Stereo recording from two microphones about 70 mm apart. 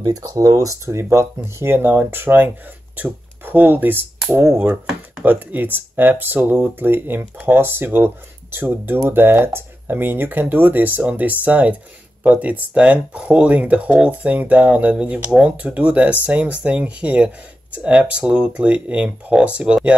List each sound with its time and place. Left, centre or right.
0.0 s speech: right
5.2 s speech: right